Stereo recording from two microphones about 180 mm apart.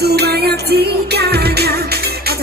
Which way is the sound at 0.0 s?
65° right (ahead or behind).